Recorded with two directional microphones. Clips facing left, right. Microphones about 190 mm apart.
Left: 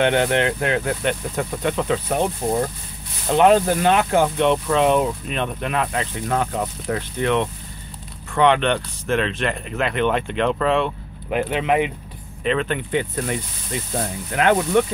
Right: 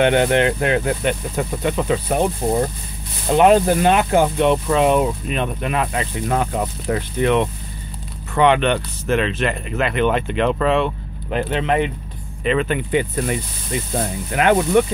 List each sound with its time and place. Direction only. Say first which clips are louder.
0.0 s speech: right 3 dB; 15° right (ahead or behind); by 11.9 s 10° left (ahead or behind)
12.4 s speech: right 3 dB; 5° right (ahead or behind)